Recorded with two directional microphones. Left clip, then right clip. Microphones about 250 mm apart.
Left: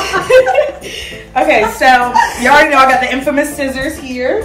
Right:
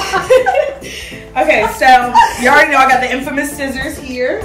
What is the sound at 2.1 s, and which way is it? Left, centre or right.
Speech, right.